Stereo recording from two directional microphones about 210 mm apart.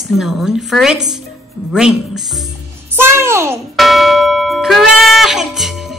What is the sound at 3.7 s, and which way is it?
Church bell, centre (ahead or behind).